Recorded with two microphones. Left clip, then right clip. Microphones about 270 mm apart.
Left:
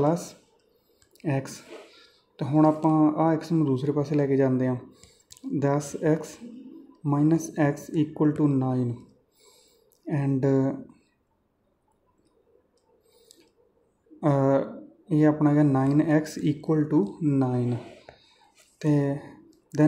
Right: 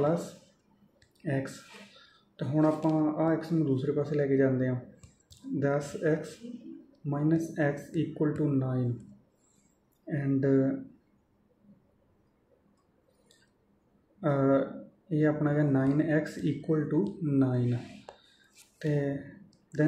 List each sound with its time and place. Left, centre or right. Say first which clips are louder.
1.2 s speech: left 4 dB; left
10.0 s speech: left 3 dB; left
14.2 s speech: left 4 dB; left
18.8 s speech: left 6 dB; left